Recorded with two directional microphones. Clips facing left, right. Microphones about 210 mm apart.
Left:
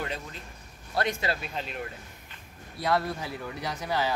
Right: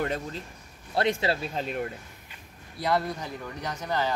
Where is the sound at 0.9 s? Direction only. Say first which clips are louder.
Right 4 dB; 25° right (ahead or behind); by 1.9 s 45° right (ahead or behind).